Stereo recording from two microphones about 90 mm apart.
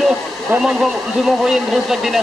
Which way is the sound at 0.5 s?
25° right (ahead or behind).